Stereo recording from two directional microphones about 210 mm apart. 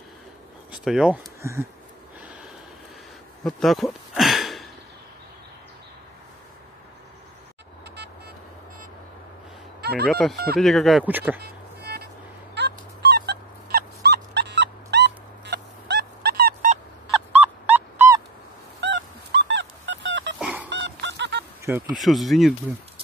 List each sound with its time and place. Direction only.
0.7 s speech: 5° right (ahead or behind)
3.4 s a sound: centre (ahead or behind)
9.8 s telephone dialing: 50° right (ahead or behind)
10.0 s speech: centre (ahead or behind)
12.5 s dog: 50° right (ahead or behind)
17.3 s a sound: 5° right (ahead or behind)
18.8 s dog: 60° right (ahead or behind)
20.3 s fowl: 5° right (ahead or behind)
20.7 s fowl: 55° right (ahead or behind)
21.9 s speech: centre (ahead or behind)